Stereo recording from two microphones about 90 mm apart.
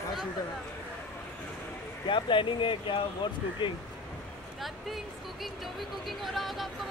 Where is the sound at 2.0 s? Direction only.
65° left (ahead or behind).